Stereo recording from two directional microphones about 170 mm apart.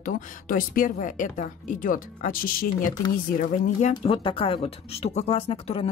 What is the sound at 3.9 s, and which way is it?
Speech, 30° left (ahead or behind).